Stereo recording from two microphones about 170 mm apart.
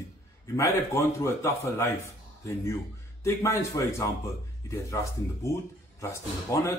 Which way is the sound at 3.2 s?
15° left (ahead or behind).